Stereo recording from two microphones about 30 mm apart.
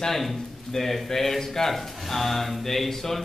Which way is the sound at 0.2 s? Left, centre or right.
Centre.